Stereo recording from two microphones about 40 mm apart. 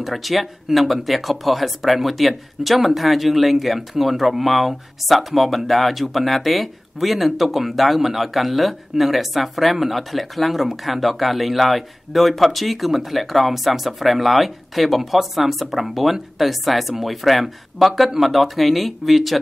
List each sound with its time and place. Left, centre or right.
0.0 s speech: centre